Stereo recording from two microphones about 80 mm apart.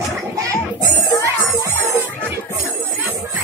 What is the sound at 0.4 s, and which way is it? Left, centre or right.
Music, right.